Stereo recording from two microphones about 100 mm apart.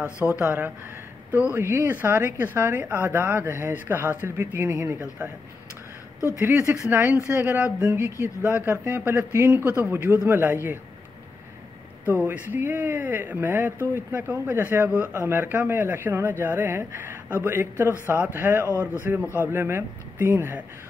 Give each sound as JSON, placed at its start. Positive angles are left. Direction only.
{"t": 0.4, "sound": "speech", "side_deg": -15}
{"t": 1.6, "sound": "speech", "side_deg": -25}
{"t": 6.4, "sound": "speech", "side_deg": -15}
{"t": 9.5, "sound": "speech", "side_deg": -15}
{"t": 12.3, "sound": "speech", "side_deg": -20}